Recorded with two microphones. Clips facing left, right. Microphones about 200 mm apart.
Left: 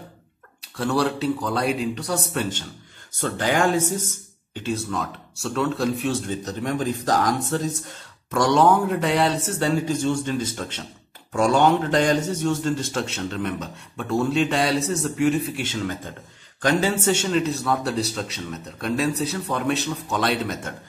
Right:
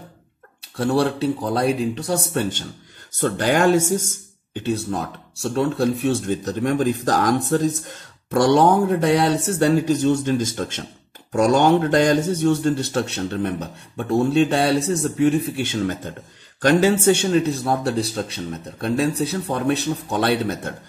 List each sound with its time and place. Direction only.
0.7 s a man's voice: 30° right (ahead or behind)
3.2 s speech: 45° right (ahead or behind)
4.8 s a man's voice: 35° right (ahead or behind)
6.2 s a man's voice: 50° right (ahead or behind); by 20.2 s 35° right (ahead or behind)